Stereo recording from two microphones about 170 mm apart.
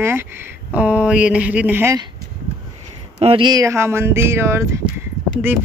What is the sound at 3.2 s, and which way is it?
Speech, 30° right (ahead or behind).